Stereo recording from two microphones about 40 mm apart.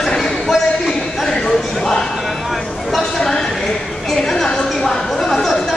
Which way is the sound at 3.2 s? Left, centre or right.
Centre.